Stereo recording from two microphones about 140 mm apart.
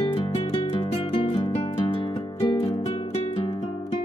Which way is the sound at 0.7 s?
40° left (ahead or behind).